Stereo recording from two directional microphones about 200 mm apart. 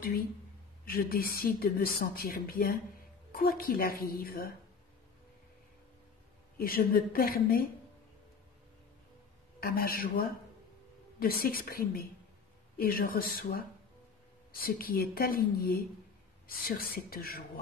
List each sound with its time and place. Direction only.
0.8 s a woman's voice: 50° left (ahead or behind)
6.6 s a woman's voice: 50° left (ahead or behind)
9.6 s a woman's voice: 50° left (ahead or behind)